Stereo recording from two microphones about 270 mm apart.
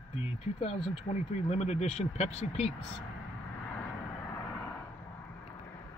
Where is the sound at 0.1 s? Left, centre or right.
Left.